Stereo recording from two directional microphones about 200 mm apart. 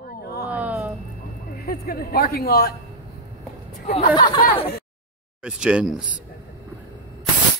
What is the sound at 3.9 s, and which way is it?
Speech, 30° left (ahead or behind).